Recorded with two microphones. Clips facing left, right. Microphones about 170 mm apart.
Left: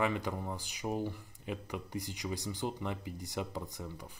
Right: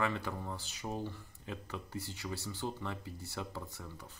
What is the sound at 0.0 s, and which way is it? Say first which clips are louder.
Speech: left 3 dB; 15° left (ahead or behind).